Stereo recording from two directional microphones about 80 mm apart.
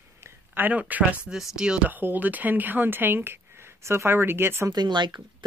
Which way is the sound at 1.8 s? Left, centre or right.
Right.